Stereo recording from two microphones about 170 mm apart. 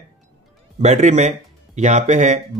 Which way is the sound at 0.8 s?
45° right (ahead or behind).